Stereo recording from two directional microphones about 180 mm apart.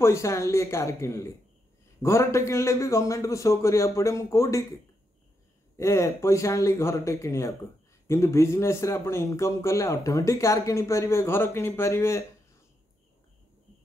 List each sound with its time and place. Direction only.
0.0 s a man's voice: 15° left (ahead or behind)
5.8 s a man's voice: 15° left (ahead or behind)